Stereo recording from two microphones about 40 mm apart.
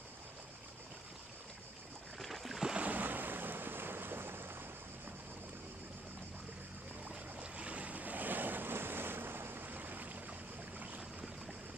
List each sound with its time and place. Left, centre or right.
2.1 s boat: centre
2.8 s boat: right
7.3 s waves: right
10.8 s a sound: right